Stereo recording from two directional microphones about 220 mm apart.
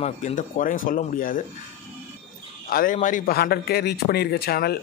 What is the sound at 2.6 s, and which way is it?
A man's voice, 40° left (ahead or behind).